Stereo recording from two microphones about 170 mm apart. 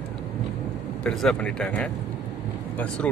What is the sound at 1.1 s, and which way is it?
Speech, 5° left (ahead or behind).